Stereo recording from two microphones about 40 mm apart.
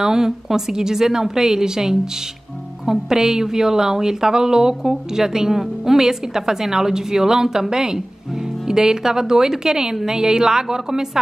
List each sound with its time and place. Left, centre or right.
0.0 s a woman's voice: centre